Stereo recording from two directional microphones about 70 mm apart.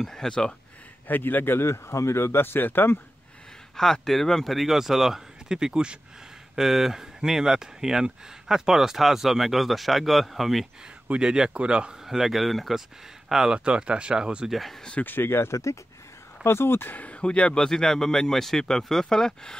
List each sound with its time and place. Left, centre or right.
0.0 s speech: centre
1.0 s speech: left
3.7 s speech: centre
11.1 s speech: centre
14.5 s speech: centre
15.0 s speech: left
16.4 s speech: left
16.9 s speech: centre